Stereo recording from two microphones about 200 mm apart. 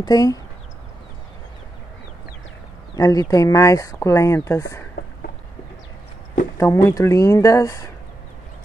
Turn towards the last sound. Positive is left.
turn(degrees=15)  # may be behind; listen again after turning